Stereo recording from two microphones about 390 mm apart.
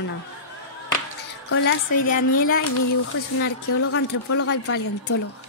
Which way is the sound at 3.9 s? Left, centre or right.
Left.